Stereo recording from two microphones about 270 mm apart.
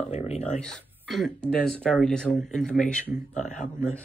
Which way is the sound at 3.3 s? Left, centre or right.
Left.